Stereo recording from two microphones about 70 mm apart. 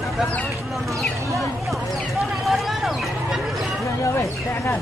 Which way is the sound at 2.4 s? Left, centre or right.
Centre.